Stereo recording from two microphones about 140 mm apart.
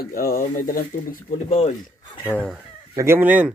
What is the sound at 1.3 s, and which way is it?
Speech, 45° left (ahead or behind).